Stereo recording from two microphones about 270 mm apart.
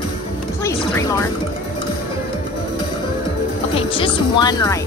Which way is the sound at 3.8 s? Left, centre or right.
Centre.